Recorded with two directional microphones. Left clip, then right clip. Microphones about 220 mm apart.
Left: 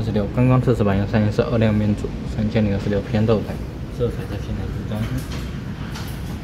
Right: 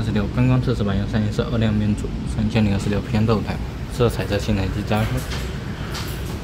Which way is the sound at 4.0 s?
25° right (ahead or behind).